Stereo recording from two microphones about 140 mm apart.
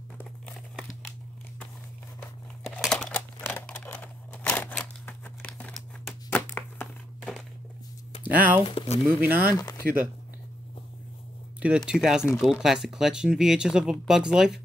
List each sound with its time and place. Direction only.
2.8 s crumpling: 5° left (ahead or behind)
3.3 s a sound: 15° left (ahead or behind)
7.2 s walk: centre (ahead or behind)
8.2 s speech: 10° right (ahead or behind)
8.6 s speech: 50° left (ahead or behind)
9.2 s speech: 10° right (ahead or behind)
9.6 s speech: 25° left (ahead or behind)
11.6 s speech: 5° right (ahead or behind)